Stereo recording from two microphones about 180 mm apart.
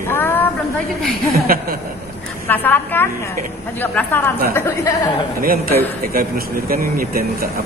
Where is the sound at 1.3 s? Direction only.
55° right (ahead or behind).